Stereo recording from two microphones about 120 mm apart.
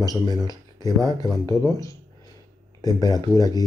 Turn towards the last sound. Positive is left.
turn(degrees=30)  # may be behind; listen again after turning